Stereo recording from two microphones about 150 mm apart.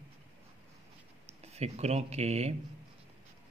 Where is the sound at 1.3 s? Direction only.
45° right (ahead or behind).